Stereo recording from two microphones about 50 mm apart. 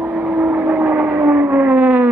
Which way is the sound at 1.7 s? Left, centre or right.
Right.